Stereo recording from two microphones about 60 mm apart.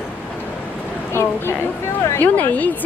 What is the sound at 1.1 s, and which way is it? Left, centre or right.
Speech, left.